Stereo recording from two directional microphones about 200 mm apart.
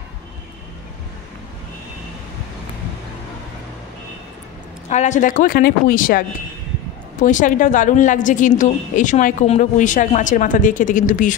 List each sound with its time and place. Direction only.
4.8 s a woman's voice: 35° left (ahead or behind)